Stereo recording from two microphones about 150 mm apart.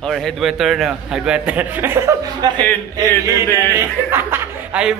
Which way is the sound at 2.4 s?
25° right (ahead or behind).